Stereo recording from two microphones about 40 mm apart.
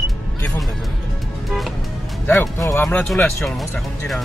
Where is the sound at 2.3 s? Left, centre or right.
Left.